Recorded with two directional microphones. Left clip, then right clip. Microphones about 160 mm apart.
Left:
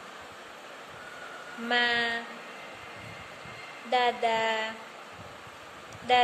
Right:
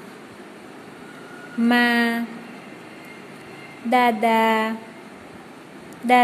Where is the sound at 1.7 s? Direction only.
35° right (ahead or behind).